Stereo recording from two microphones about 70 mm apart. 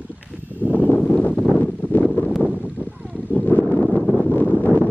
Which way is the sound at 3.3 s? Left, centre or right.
Left.